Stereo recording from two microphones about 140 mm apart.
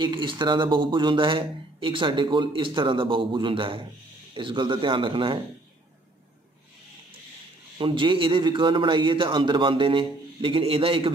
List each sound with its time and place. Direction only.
0.0 s speech: 35° right (ahead or behind)
7.7 s speech: 40° right (ahead or behind)